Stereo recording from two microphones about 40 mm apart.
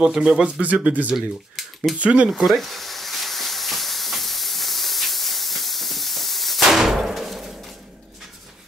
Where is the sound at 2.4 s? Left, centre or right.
Centre.